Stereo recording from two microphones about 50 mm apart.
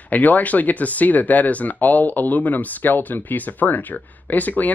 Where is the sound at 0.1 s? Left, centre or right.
Left.